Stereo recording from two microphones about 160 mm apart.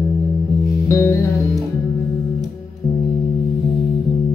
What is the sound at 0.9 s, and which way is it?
Music, 15° left (ahead or behind).